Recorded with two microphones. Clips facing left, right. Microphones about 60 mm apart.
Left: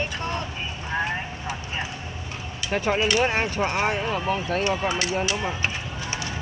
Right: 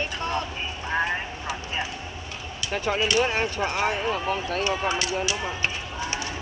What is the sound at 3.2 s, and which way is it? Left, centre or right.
Speech, left.